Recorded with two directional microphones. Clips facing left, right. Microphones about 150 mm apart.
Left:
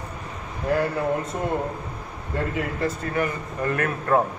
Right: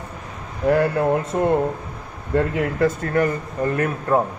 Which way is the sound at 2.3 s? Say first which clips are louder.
Right 7 dB; 60° right (ahead or behind).